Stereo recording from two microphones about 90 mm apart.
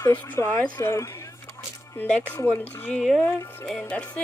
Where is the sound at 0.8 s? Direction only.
35° left (ahead or behind).